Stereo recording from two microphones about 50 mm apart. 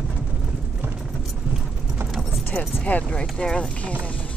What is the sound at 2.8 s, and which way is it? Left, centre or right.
Speech, left.